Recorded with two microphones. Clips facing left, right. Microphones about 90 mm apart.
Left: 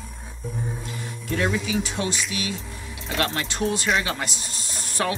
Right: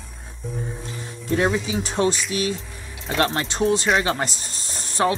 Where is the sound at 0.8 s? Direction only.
30° right (ahead or behind).